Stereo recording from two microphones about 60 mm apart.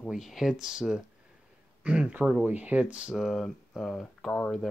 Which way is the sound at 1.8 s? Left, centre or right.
Right.